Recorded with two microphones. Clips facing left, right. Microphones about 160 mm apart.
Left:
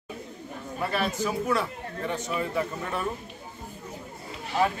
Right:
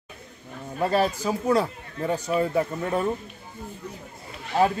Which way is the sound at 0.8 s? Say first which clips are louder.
Right 5 dB; 35° right (ahead or behind).